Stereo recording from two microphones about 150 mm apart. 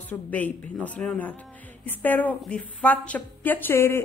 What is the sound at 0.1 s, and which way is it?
A woman's voice, 10° left (ahead or behind).